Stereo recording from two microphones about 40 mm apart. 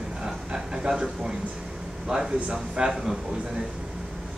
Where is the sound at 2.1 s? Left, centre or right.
Centre.